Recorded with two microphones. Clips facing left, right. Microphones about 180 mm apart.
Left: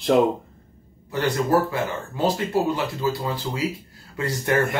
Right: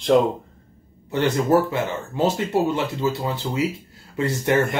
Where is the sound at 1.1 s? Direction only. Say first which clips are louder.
Right 2 dB; 25° right (ahead or behind).